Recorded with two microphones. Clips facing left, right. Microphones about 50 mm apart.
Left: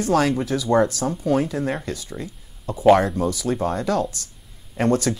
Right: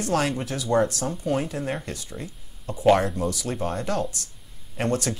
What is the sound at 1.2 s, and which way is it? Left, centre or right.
Speech, left.